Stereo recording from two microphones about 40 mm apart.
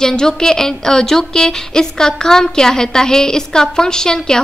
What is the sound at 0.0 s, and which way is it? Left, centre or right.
A woman's voice, centre.